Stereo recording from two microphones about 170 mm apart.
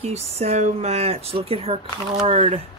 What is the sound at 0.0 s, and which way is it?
Speech, 40° right (ahead or behind).